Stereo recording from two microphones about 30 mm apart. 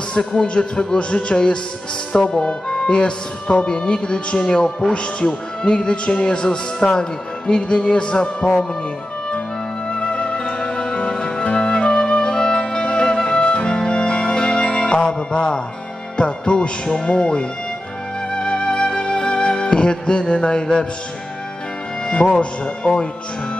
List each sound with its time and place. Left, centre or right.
0.2 s speech: left
9.8 s music: left
16.2 s speech: left
17.1 s speech: left
18.3 s music: left
22.1 s speech: left